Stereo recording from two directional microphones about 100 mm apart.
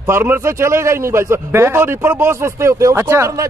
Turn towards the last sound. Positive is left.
turn(degrees=-25)  # may be behind; listen again after turning